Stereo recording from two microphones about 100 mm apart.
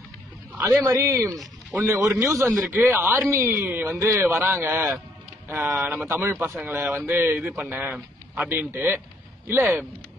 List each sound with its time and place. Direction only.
0.6 s a man's voice: 30° right (ahead or behind)